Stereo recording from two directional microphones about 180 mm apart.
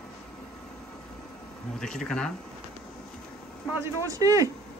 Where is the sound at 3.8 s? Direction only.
20° right (ahead or behind).